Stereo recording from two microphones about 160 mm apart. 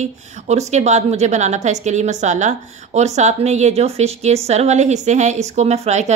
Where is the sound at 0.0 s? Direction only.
45° right (ahead or behind).